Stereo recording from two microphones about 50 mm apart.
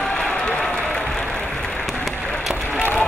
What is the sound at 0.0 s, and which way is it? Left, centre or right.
Applause, centre.